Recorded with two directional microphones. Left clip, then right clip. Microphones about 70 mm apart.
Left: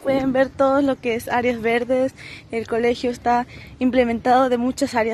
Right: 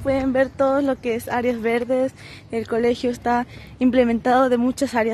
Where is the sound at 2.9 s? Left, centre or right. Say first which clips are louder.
Left 2 dB; right.